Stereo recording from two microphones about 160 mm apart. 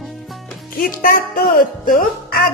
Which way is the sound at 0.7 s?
65° left (ahead or behind).